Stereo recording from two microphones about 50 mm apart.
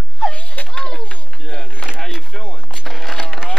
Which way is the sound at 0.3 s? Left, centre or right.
Left.